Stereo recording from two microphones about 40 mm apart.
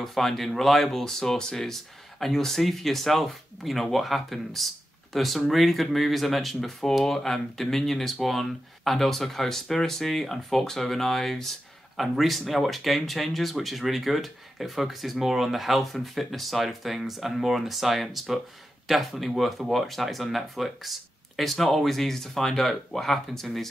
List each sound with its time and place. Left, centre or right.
0.0 s speech: centre